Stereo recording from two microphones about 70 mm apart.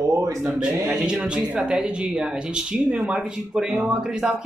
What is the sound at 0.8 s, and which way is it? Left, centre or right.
Speech, centre.